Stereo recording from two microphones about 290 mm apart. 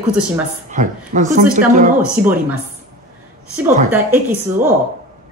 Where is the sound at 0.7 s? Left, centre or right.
Right.